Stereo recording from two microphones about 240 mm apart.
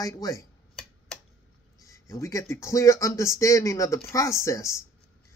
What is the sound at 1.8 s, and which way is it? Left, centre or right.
Speech, centre.